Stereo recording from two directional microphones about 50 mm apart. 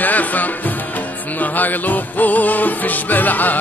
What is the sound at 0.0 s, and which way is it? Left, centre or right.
Music, left.